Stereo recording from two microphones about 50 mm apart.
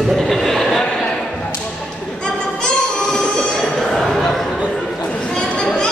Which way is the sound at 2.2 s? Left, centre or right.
Centre.